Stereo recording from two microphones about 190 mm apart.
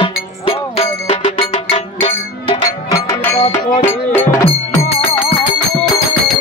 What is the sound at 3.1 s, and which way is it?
Music, 15° left (ahead or behind).